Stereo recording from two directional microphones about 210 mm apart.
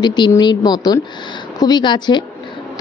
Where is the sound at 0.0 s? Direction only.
20° left (ahead or behind).